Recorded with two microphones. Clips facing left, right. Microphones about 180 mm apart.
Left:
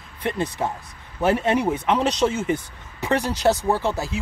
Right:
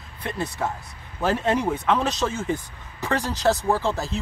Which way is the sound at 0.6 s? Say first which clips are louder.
Left 1 dB; 20° left (ahead or behind).